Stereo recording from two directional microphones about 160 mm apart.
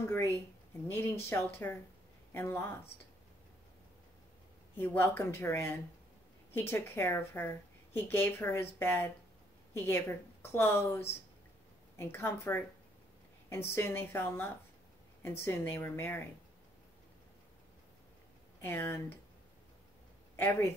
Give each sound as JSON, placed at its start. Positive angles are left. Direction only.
{"t": 0.0, "sound": "a woman's voice", "side_deg": 15}
{"t": 4.7, "sound": "a woman's voice", "side_deg": 15}
{"t": 12.0, "sound": "a woman's voice", "side_deg": 15}
{"t": 18.6, "sound": "a woman's voice", "side_deg": 15}